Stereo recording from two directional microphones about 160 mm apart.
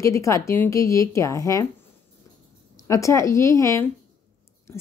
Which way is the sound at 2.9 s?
20° left (ahead or behind).